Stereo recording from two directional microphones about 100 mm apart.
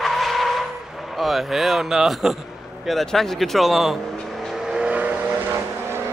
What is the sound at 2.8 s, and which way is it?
Speech, 5° left (ahead or behind).